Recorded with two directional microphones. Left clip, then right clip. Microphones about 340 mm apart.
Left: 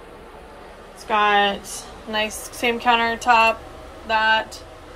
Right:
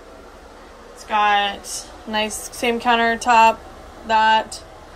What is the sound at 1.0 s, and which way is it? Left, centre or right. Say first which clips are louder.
A woman's voice: even; centre.